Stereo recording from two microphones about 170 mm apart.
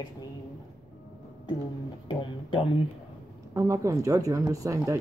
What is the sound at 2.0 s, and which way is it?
Speech, 30° left (ahead or behind).